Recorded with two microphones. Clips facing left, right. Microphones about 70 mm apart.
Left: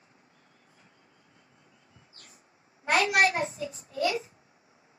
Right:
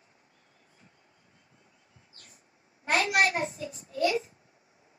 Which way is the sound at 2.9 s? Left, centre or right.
Left.